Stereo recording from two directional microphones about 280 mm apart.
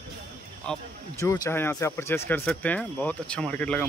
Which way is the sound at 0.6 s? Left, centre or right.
Centre.